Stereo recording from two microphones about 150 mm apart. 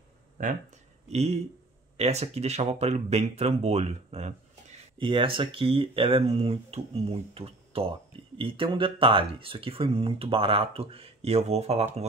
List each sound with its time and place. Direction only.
1.1 s speech: 45° right (ahead or behind)
4.9 s speech: 35° right (ahead or behind)